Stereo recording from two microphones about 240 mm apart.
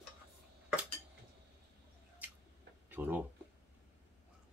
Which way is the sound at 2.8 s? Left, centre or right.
Centre.